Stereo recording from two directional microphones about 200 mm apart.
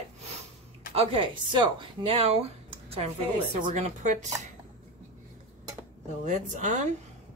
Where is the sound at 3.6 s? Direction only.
40° right (ahead or behind).